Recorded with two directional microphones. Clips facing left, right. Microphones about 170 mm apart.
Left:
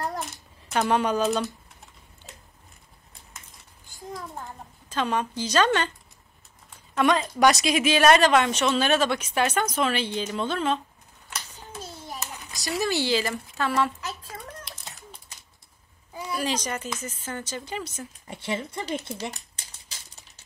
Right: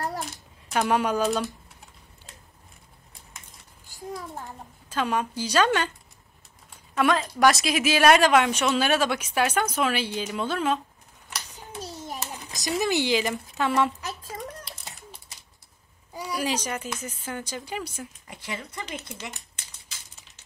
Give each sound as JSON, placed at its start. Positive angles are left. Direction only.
{"t": 0.7, "sound": "a woman's voice", "side_deg": -5}
{"t": 4.8, "sound": "a woman's voice", "side_deg": -10}
{"t": 7.0, "sound": "a woman's voice", "side_deg": 0}
{"t": 11.7, "sound": "hands", "side_deg": -20}
{"t": 12.5, "sound": "a woman's voice", "side_deg": -20}
{"t": 16.2, "sound": "a woman's voice", "side_deg": -10}
{"t": 18.2, "sound": "speech", "side_deg": 30}